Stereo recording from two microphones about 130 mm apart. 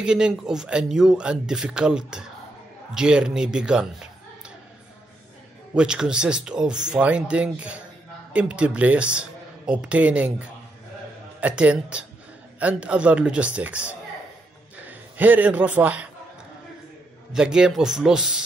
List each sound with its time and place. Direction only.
0.0 s speech: 5° right (ahead or behind)
5.8 s a man's voice: 5° right (ahead or behind)
17.3 s speech: 5° right (ahead or behind)